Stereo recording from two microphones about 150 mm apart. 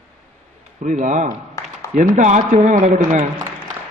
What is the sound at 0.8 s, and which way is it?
A man's voice, 50° right (ahead or behind).